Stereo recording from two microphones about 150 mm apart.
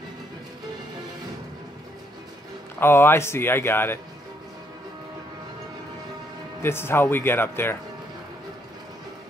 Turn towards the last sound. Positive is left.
turn(degrees=15)  # may be behind; listen again after turning